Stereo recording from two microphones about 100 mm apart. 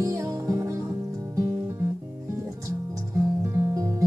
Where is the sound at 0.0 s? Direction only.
30° right (ahead or behind).